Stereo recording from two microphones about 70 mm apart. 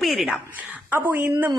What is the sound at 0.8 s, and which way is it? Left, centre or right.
Speech, right.